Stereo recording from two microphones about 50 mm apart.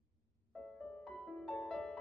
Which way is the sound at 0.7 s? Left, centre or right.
Centre.